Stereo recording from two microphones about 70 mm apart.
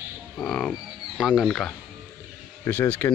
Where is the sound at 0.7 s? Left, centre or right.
Centre.